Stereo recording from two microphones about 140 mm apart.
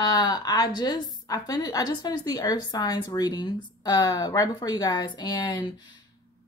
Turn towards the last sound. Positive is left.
turn(degrees=30)  # may be behind; listen again after turning